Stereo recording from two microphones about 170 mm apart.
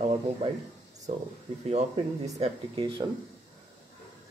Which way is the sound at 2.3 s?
40° right (ahead or behind).